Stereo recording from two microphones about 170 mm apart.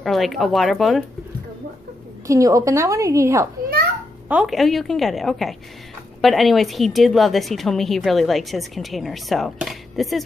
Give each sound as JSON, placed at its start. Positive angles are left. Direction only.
{"t": 0.0, "sound": "speech", "side_deg": 0}
{"t": 2.2, "sound": "a woman's voice", "side_deg": -20}
{"t": 4.3, "sound": "speech", "side_deg": -5}